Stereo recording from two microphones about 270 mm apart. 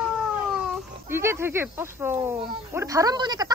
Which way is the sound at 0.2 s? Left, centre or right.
Centre.